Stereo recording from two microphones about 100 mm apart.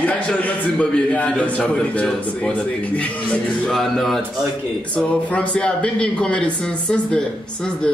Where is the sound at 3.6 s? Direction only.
5° left (ahead or behind).